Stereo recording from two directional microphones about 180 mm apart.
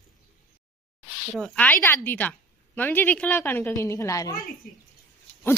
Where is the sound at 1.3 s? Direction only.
5° left (ahead or behind).